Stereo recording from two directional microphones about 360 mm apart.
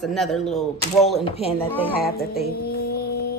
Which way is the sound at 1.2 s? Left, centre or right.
Centre.